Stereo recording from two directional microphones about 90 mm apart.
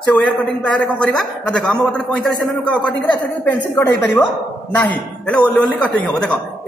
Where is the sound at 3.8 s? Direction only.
20° left (ahead or behind).